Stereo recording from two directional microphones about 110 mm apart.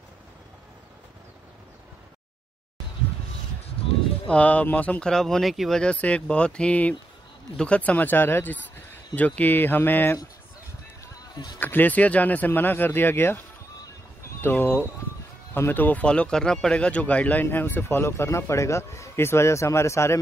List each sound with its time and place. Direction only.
4.3 s speech: 15° left (ahead or behind)
11.1 s run: 40° left (ahead or behind)
11.6 s speech: 15° left (ahead or behind)
14.4 s speech: 20° left (ahead or behind)